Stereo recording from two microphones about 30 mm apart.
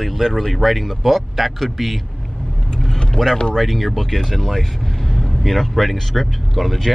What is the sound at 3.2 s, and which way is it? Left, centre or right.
Speech, centre.